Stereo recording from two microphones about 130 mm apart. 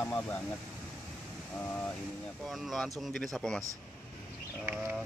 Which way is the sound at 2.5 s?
Centre (ahead or behind).